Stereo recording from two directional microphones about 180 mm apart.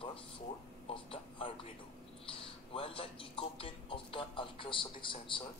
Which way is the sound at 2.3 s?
30° left (ahead or behind).